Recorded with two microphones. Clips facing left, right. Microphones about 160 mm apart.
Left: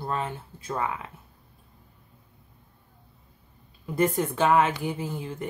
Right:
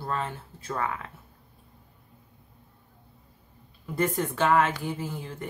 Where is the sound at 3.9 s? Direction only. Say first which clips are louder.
Left 3 dB; 15° left (ahead or behind).